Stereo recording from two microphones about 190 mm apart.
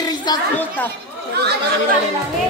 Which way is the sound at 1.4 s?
60° right (ahead or behind).